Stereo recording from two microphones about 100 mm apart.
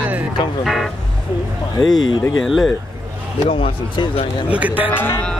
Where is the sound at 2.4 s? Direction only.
Centre (ahead or behind).